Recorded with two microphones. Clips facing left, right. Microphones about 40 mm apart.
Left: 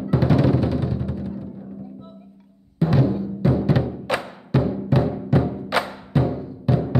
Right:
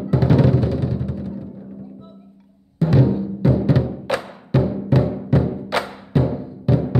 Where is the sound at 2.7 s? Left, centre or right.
Centre.